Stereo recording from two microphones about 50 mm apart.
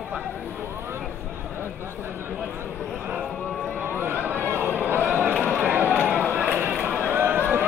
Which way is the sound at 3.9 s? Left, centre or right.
Right.